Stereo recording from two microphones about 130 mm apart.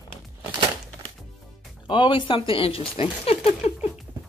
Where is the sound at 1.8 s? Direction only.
40° left (ahead or behind).